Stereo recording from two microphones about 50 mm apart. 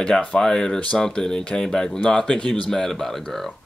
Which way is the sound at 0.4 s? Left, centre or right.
Centre.